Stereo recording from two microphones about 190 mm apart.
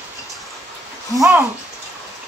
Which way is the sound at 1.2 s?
10° right (ahead or behind).